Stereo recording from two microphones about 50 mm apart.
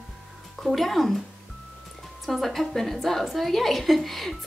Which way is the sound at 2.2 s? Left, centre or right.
Centre.